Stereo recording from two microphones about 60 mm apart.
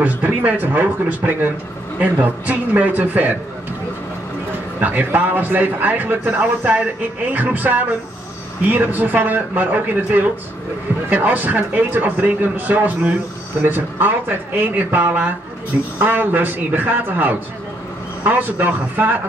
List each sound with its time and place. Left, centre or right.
0.0 s a man's voice: right
4.7 s a man's voice: right